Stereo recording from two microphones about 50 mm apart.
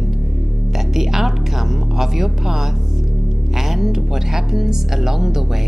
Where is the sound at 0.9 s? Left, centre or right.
Centre.